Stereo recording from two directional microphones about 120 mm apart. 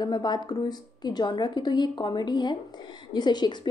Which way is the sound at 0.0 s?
35° left (ahead or behind).